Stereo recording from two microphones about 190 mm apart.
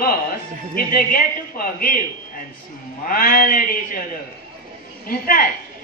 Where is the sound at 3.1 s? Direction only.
50° left (ahead or behind).